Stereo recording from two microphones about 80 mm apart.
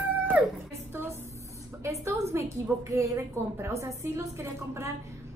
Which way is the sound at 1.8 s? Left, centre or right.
Right.